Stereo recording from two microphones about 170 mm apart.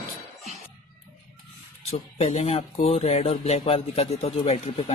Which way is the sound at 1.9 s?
40° left (ahead or behind).